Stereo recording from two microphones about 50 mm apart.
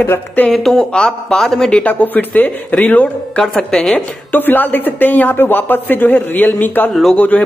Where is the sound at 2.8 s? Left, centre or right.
Left.